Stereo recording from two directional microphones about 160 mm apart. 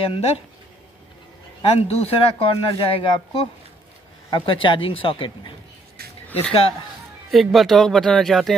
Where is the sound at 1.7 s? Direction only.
40° left (ahead or behind).